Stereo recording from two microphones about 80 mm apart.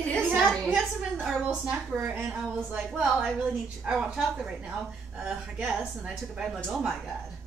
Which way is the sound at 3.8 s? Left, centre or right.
Centre.